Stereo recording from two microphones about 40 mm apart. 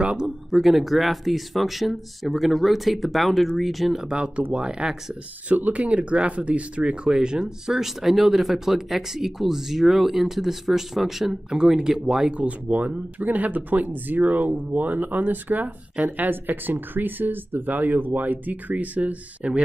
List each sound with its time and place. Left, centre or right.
0.0 s speech: right
0.5 s speech: centre
4.1 s speech: right
5.5 s speech: right; by 7.8 s centre
7.8 s speech: centre
12.4 s speech: right